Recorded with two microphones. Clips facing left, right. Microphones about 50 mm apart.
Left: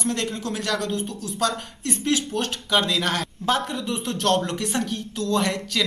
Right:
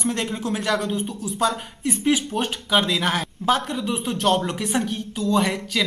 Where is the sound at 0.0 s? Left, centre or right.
Centre.